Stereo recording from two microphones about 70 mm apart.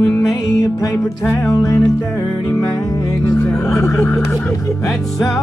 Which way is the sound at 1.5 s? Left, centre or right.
Left.